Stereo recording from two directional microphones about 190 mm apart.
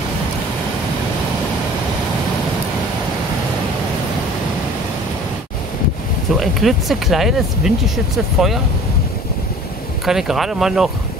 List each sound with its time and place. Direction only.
6.4 s speech: centre (ahead or behind)
10.0 s speech: centre (ahead or behind)